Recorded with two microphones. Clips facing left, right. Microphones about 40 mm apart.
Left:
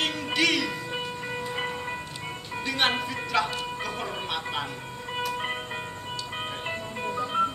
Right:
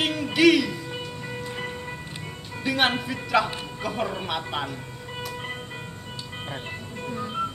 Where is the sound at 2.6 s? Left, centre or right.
Centre.